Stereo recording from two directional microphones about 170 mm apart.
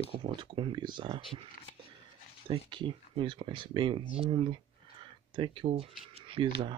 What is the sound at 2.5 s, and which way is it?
Speech, 30° right (ahead or behind).